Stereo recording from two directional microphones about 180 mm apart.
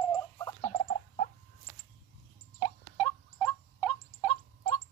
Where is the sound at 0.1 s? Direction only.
20° left (ahead or behind).